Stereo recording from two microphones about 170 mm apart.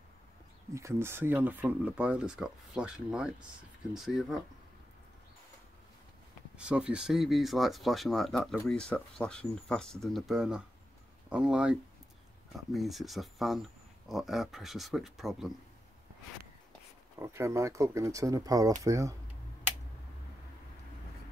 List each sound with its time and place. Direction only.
0.7 s speech: 15° right (ahead or behind)
6.5 s speech: 5° right (ahead or behind)
12.7 s speech: centre (ahead or behind)
17.2 s speech: 15° right (ahead or behind)